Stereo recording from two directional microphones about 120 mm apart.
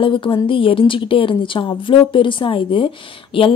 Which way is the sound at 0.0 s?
45° left (ahead or behind).